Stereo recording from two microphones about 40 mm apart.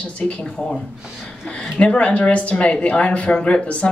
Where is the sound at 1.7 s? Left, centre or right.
Left.